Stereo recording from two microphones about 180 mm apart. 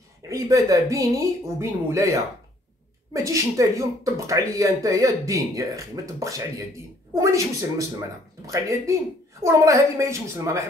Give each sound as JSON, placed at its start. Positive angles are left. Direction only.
{"t": 0.3, "sound": "speech", "side_deg": -20}